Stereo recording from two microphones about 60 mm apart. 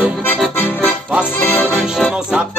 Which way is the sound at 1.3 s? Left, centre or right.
Left.